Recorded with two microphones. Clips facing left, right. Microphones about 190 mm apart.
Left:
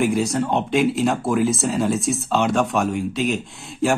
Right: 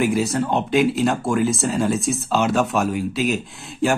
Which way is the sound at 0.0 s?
Centre (ahead or behind).